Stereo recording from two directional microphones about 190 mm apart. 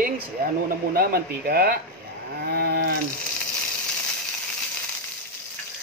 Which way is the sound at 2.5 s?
55° right (ahead or behind).